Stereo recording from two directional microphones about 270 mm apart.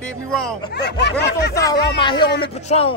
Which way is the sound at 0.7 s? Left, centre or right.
Left.